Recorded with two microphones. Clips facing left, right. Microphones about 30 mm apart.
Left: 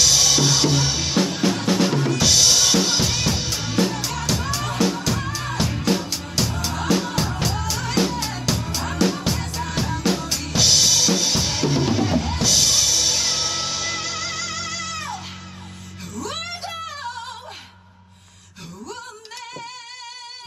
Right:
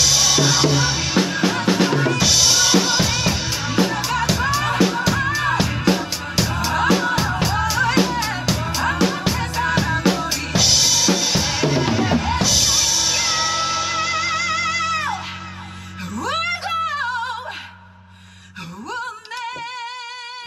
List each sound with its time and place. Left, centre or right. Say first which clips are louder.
0.0 s drum kit: right 1 dB; centre
1.5 s music: right 2 dB; centre
2.1 s drum kit: right 1 dB; centre; by 4.5 s right
4.8 s music: right 1 dB; centre
5.2 s music: right 8 dB; right
5.9 s music: right 3 dB; centre
10.0 s drum: right 3 dB; centre
16.2 s music: right 7 dB; right